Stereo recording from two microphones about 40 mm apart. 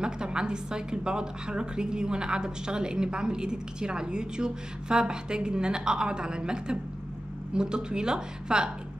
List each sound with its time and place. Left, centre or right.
0.0 s a woman's voice: centre